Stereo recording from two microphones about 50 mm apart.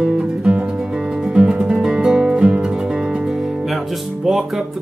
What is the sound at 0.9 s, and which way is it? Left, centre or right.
Music, centre.